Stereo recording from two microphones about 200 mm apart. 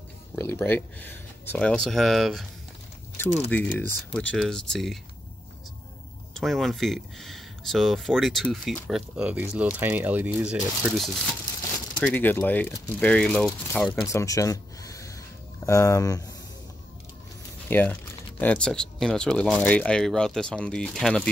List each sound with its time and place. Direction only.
0.4 s speech: 10° left (ahead or behind)
3.5 s speech: 5° left (ahead or behind)
6.3 s speech: centre (ahead or behind)
12.0 s speech: 10° left (ahead or behind)
13.8 s speech: 15° left (ahead or behind)
17.6 s speech: 10° left (ahead or behind)